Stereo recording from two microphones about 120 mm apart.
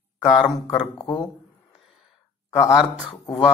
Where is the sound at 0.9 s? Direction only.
35° left (ahead or behind).